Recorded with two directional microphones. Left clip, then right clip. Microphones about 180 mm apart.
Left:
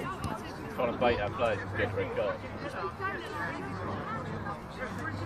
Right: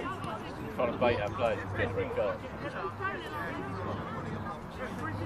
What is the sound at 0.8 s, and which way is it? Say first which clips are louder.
Speech: even; 35° left (ahead or behind).